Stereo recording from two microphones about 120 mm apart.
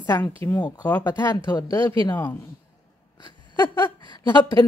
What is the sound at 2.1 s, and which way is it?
Speech, 20° left (ahead or behind).